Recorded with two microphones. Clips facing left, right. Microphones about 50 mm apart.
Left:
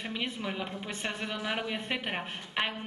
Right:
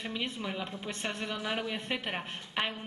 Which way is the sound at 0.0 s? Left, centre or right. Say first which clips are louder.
Left 1 dB; centre.